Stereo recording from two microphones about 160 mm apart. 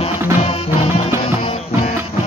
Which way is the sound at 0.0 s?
40° left (ahead or behind).